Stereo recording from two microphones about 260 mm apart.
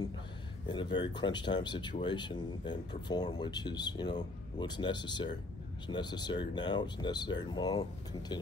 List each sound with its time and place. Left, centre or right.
0.7 s speech: centre